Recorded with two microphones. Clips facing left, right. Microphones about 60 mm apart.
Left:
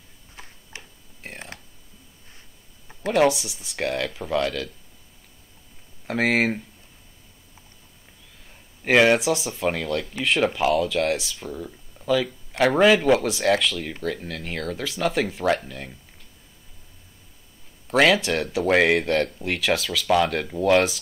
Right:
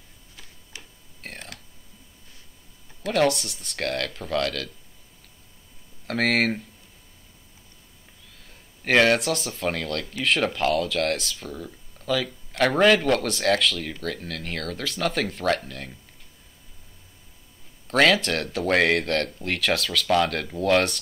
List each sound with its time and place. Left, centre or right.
0.7 s a sound: left
1.2 s speech: centre
3.1 s speech: centre
6.0 s speech: centre
8.8 s speech: centre
17.8 s speech: centre